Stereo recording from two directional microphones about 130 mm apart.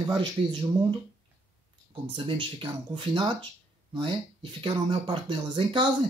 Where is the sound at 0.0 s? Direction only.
35° right (ahead or behind).